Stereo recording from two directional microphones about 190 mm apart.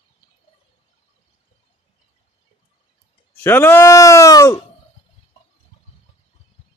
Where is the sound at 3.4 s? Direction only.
10° left (ahead or behind).